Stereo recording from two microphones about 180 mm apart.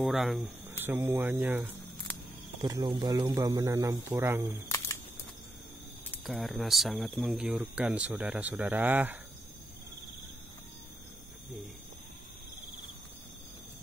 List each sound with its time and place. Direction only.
0.0 s speech: centre (ahead or behind)
0.7 s speech: 15° right (ahead or behind)
2.6 s speech: 20° right (ahead or behind)
4.6 s camera: 15° left (ahead or behind)
6.2 s speech: centre (ahead or behind)